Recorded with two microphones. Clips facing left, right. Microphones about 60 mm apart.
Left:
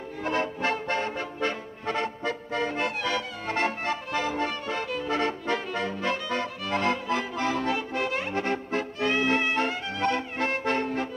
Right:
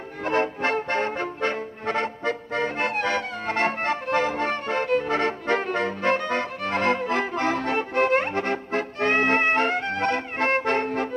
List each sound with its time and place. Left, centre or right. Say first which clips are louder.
0.2 s music: right 4 dB; right